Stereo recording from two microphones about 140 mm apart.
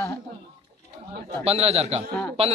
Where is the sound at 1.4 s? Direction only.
45° right (ahead or behind).